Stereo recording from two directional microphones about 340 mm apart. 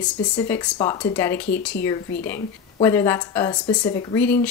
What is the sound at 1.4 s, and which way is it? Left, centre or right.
Speech, left.